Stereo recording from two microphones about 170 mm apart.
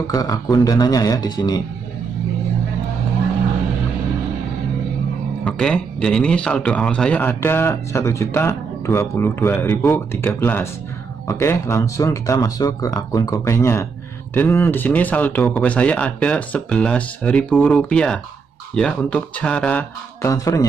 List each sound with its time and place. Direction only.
0.0 s speech: 20° left (ahead or behind)
5.4 s a man's voice: 5° left (ahead or behind)